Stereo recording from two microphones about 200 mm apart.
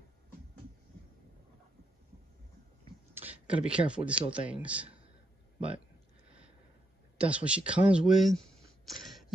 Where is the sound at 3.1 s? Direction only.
10° right (ahead or behind).